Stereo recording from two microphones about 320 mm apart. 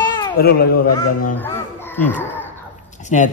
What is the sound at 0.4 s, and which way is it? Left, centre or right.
Speech, left.